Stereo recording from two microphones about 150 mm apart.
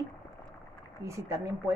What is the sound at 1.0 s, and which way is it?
Speech, 20° right (ahead or behind).